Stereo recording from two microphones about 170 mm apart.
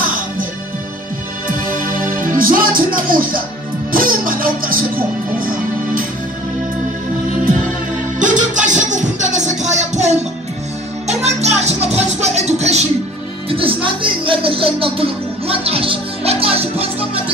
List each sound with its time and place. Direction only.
1.7 s music: 55° right (ahead or behind)
8.2 s music: 45° right (ahead or behind)